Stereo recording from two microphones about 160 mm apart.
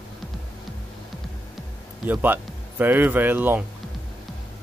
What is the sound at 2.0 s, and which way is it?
Speech, 10° right (ahead or behind).